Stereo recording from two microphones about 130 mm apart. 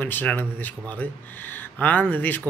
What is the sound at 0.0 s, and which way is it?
Speech, 15° left (ahead or behind).